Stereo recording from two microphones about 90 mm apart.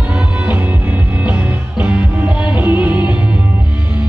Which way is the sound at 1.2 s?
15° right (ahead or behind).